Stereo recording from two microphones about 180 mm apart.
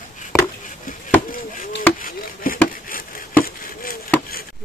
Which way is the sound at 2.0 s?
50° left (ahead or behind).